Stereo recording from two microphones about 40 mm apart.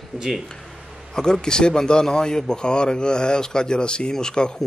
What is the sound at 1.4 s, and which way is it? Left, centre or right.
A man's voice, centre.